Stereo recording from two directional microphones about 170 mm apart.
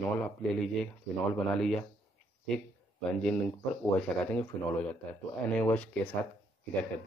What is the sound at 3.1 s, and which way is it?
Speech, 5° left (ahead or behind).